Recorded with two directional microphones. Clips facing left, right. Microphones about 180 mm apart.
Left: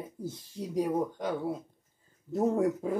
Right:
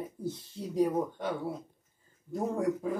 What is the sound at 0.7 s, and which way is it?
Speech, 10° left (ahead or behind).